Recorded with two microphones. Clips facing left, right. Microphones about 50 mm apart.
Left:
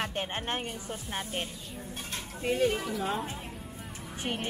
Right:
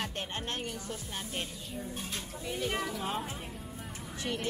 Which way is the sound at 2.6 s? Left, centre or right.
Centre.